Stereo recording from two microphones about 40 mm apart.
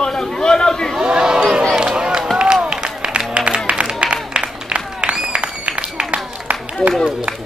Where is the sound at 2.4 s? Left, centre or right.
Right.